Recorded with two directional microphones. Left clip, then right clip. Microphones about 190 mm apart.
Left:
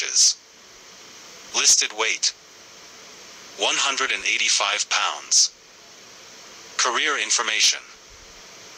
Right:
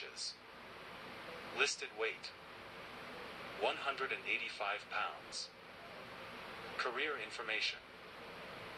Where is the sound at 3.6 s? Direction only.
60° left (ahead or behind).